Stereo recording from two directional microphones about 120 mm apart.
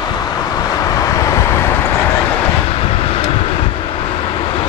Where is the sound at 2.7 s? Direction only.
50° left (ahead or behind).